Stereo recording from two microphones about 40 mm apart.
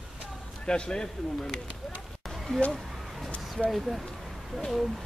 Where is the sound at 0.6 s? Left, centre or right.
Left.